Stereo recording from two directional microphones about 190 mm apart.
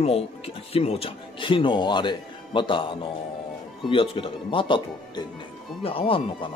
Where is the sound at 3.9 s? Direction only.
30° left (ahead or behind).